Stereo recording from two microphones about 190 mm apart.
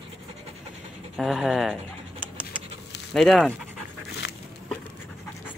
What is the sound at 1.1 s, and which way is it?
Speech, centre (ahead or behind).